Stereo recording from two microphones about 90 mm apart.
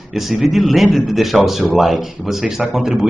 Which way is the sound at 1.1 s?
Centre (ahead or behind).